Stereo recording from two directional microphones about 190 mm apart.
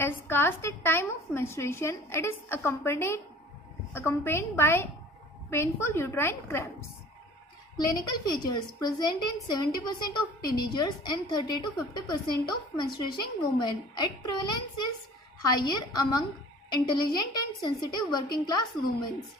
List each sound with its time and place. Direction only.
0.0 s a woman's voice: 10° left (ahead or behind)
7.7 s a woman's voice: 20° left (ahead or behind)
15.5 s a woman's voice: 20° left (ahead or behind)